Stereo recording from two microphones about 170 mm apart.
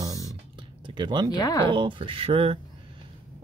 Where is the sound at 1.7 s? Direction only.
30° right (ahead or behind).